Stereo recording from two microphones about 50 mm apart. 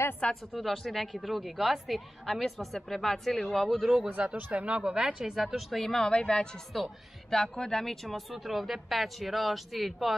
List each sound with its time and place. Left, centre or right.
0.2 s a woman's voice: left
0.6 s a woman's voice: centre
4.5 s a woman's voice: right; by 6.4 s centre
6.7 s a woman's voice: centre
7.3 s a woman's voice: centre